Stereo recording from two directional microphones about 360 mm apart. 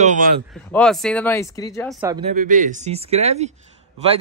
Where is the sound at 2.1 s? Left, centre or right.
Centre.